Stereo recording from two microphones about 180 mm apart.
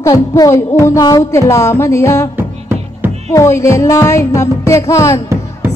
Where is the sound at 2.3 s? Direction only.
10° right (ahead or behind).